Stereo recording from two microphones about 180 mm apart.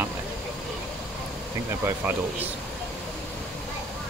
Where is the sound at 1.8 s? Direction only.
15° right (ahead or behind).